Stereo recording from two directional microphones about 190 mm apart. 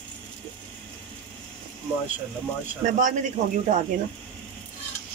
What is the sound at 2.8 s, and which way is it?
Speech, 40° right (ahead or behind).